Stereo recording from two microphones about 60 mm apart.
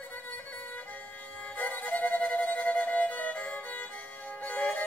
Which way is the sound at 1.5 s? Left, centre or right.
Left.